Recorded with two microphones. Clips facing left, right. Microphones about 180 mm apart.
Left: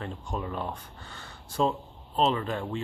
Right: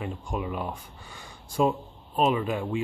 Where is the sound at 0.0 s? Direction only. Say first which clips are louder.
Right 2 dB; 10° right (ahead or behind).